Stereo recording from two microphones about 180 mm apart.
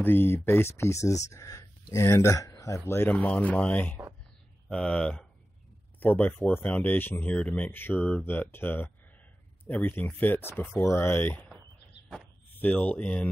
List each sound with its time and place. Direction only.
0.0 s speech: 10° left (ahead or behind)